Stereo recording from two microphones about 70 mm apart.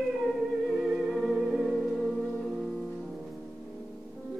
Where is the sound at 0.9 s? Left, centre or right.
Centre.